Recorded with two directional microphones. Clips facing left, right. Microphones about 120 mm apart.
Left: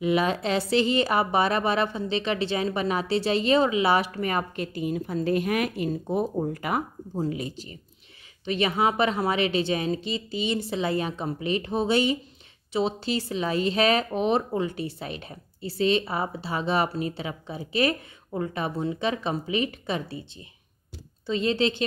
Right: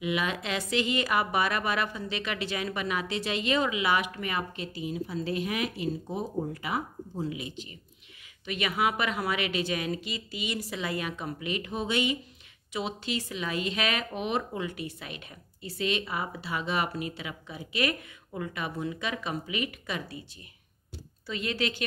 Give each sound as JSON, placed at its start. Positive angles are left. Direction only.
{"t": 0.0, "sound": "a woman's voice", "side_deg": 35}